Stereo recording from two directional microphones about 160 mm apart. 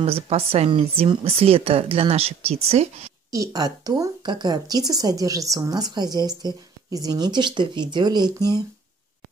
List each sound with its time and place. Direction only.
0.0 s speech: 35° right (ahead or behind)
3.3 s speech: 20° right (ahead or behind)